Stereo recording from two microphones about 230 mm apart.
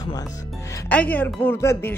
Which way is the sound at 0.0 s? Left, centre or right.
Centre.